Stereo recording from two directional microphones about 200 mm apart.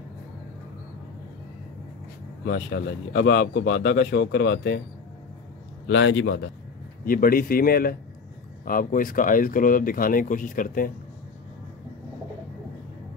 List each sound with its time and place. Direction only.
2.4 s a man's voice: 50° left (ahead or behind)
5.9 s a man's voice: 65° left (ahead or behind)
7.1 s speech: 45° left (ahead or behind)